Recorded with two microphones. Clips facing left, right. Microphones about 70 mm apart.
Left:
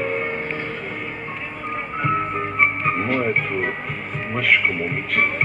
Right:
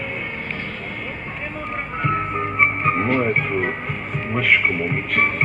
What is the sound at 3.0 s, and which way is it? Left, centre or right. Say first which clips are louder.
Music: right 2 dB; centre.